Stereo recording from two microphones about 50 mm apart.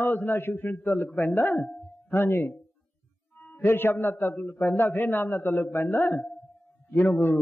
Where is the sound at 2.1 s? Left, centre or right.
Left.